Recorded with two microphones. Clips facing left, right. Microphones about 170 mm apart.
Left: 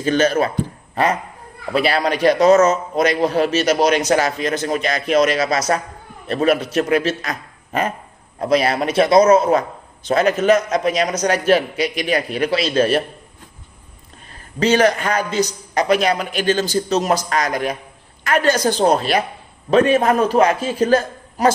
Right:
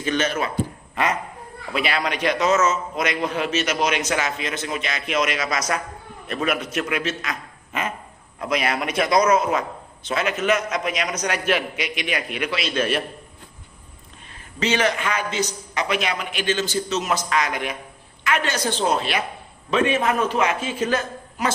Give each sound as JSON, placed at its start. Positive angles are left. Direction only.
{"t": 0.0, "sound": "a man's voice", "side_deg": 35}
{"t": 14.6, "sound": "a man's voice", "side_deg": 40}